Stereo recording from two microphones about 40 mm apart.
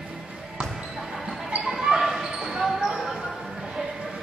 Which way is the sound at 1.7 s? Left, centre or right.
Centre.